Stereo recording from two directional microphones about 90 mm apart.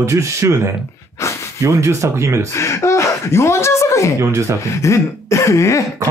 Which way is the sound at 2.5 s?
30° left (ahead or behind).